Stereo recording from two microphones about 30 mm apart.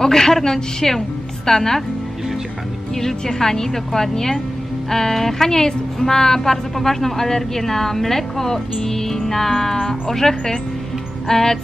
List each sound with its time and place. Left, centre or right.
0.0 s a woman's voice: centre
3.0 s speech: centre